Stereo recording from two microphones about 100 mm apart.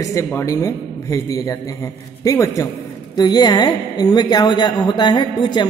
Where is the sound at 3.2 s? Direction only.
45° left (ahead or behind).